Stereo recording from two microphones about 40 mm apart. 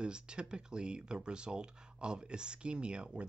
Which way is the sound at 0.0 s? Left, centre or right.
Right.